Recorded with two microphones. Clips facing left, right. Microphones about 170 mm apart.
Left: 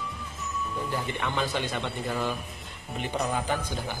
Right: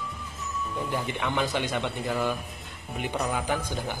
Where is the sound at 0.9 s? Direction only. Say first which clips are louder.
Right 3 dB; 15° right (ahead or behind).